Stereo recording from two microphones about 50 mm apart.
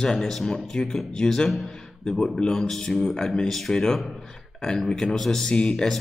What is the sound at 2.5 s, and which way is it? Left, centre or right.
A man's voice, centre.